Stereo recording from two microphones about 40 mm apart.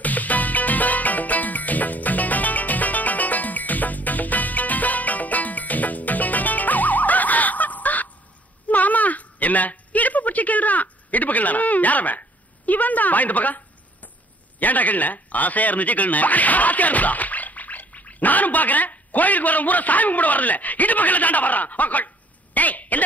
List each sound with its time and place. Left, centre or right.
0.0 s music: left
8.6 s a sound: left
14.6 s speech: left